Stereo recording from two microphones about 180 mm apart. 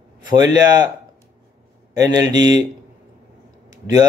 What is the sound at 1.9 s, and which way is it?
Speech, 20° right (ahead or behind).